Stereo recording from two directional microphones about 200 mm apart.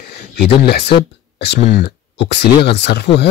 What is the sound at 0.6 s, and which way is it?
Speech, 55° left (ahead or behind).